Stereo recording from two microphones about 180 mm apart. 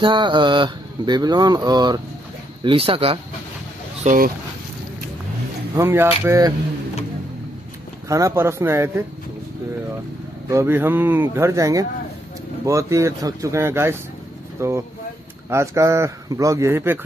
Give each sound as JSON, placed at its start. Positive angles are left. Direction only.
{"t": 0.0, "sound": "speech", "side_deg": -25}
{"t": 4.0, "sound": "speech", "side_deg": -45}
{"t": 5.8, "sound": "speech", "side_deg": -15}
{"t": 8.1, "sound": "speech", "side_deg": -15}
{"t": 10.5, "sound": "speech", "side_deg": -15}